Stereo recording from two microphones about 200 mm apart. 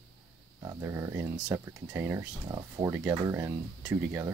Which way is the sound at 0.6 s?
15° right (ahead or behind).